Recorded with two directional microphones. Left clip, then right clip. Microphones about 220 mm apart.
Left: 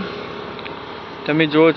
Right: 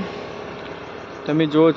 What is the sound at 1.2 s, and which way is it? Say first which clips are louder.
Speech: left 2 dB; 20° right (ahead or behind).